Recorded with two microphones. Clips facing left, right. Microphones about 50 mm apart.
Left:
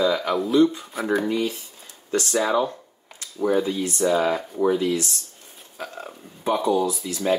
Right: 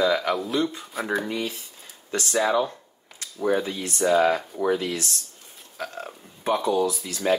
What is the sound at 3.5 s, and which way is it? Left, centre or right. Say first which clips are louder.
Speech: left 2 dB; centre.